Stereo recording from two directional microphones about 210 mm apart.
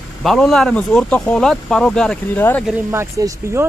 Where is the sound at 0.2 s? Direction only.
Centre (ahead or behind).